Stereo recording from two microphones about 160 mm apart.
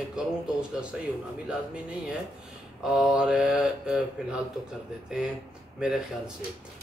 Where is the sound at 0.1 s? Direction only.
5° right (ahead or behind).